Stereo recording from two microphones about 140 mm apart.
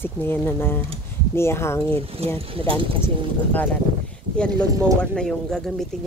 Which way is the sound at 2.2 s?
45° right (ahead or behind).